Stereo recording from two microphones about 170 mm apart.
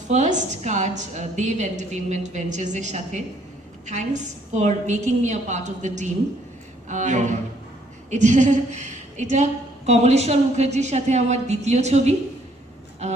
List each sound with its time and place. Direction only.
0.1 s a woman's voice: 45° right (ahead or behind)